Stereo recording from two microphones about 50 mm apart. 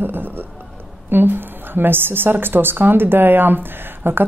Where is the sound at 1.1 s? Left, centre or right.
Right.